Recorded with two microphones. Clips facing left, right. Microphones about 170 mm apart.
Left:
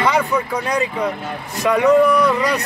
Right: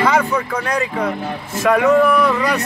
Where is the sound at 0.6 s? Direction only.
20° left (ahead or behind).